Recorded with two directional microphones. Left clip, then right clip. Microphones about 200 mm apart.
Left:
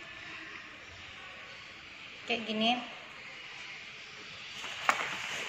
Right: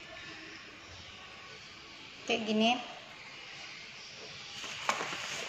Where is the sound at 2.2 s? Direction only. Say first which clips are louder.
Right 1 dB; 45° right (ahead or behind).